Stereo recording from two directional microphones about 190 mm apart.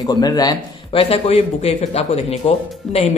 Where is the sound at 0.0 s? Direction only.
20° left (ahead or behind).